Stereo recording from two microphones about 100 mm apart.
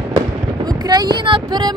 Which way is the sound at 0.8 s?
45° right (ahead or behind).